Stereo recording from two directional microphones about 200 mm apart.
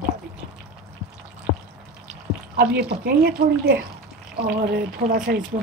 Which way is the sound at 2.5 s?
55° right (ahead or behind).